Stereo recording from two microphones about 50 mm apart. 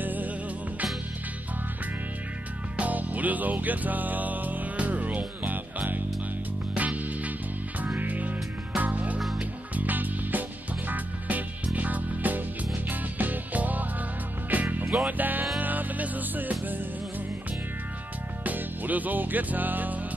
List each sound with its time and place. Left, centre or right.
0.0 s music: right
2.8 s music: right
18.4 s music: right